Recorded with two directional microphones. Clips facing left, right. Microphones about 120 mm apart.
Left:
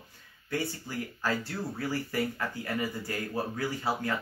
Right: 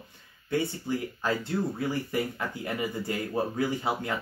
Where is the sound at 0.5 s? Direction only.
20° right (ahead or behind).